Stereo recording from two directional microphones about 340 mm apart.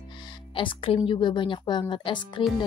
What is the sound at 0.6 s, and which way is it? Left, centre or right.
A woman's voice, centre.